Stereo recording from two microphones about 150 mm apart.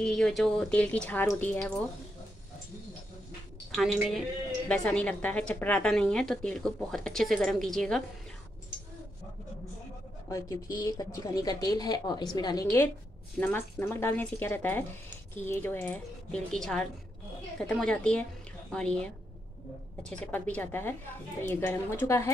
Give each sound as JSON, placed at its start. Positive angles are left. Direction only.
{"t": 0.0, "sound": "a woman's voice", "side_deg": 5}
{"t": 3.7, "sound": "a woman's voice", "side_deg": 0}
{"t": 10.2, "sound": "a woman's voice", "side_deg": 20}
{"t": 13.4, "sound": "speech", "side_deg": 15}
{"t": 20.1, "sound": "speech", "side_deg": 10}